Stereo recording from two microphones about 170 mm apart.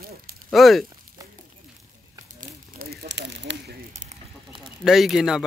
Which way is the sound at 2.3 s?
60° right (ahead or behind).